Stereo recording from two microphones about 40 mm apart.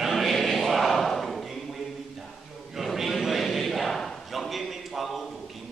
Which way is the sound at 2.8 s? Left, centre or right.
Centre.